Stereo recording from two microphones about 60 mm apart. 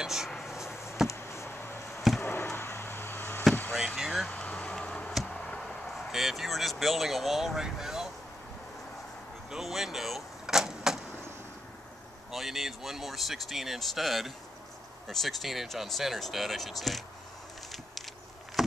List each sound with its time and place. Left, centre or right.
0.0 s dishes: centre
0.4 s a sound: centre
1.0 s a sound: left
3.7 s vehicle: centre
4.3 s vehicle: left
4.7 s a sound: centre
5.1 s a sound: centre
5.6 s vehicle: centre
5.9 s speech: centre
9.5 s vehicle: centre
12.3 s speech: centre
18.6 s chop: centre